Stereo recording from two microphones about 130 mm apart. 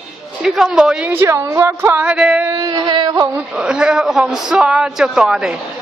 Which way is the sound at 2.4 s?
30° right (ahead or behind).